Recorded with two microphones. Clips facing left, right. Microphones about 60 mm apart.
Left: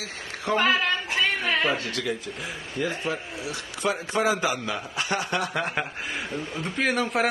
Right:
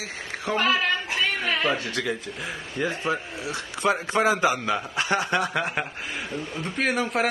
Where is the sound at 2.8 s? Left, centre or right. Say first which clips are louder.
Right 2 dB; right.